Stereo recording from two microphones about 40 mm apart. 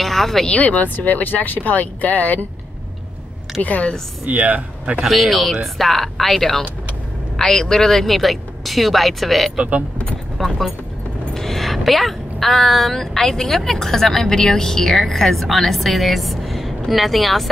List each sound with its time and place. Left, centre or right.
0.0 s a sound: centre
0.5 s speech: left
0.9 s speech: left
3.6 s speech: left
4.3 s speech: right
5.0 s speech: centre
9.6 s speech: right
10.3 s speech: centre